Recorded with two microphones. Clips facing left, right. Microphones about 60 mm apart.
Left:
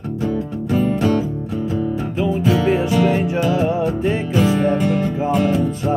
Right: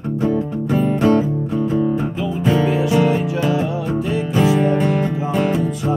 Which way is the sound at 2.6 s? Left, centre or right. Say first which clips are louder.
Left 1 dB; left.